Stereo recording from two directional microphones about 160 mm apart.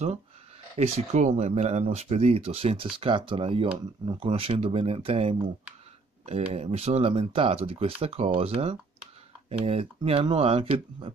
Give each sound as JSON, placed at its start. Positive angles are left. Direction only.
{"t": 0.7, "sound": "speech", "side_deg": -45}